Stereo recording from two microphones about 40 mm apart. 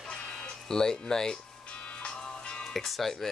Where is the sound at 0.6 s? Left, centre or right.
Centre.